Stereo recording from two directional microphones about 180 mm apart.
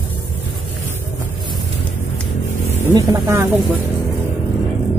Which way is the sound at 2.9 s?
20° right (ahead or behind).